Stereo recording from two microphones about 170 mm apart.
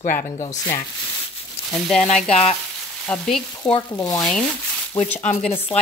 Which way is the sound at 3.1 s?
5° left (ahead or behind).